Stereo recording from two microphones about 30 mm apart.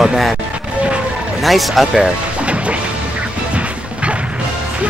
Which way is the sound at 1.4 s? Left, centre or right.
Centre.